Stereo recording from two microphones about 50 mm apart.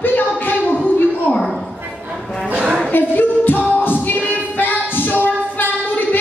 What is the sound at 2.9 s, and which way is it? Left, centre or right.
A capella, left.